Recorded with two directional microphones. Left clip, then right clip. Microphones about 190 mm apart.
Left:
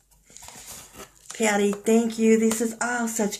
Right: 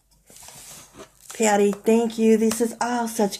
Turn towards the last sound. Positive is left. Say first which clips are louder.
# right 3 dB
turn(degrees=-40)  # may be behind; listen again after turning